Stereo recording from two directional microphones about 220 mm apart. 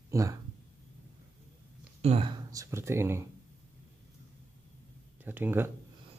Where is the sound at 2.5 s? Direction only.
15° right (ahead or behind).